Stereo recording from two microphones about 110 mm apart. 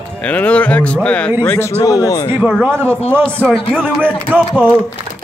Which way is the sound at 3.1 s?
10° left (ahead or behind).